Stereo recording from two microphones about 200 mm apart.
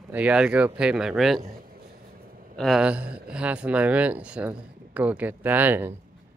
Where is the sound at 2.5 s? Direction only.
Centre (ahead or behind).